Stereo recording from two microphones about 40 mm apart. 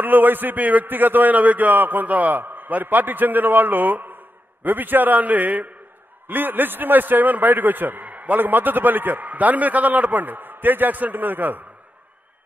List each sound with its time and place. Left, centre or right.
0.0 s a man's voice: right